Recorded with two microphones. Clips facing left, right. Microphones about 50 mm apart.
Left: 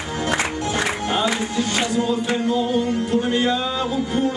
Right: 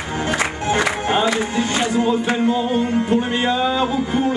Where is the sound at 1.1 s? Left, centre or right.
Right.